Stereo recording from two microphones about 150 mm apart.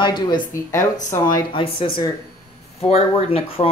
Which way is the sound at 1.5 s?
35° left (ahead or behind).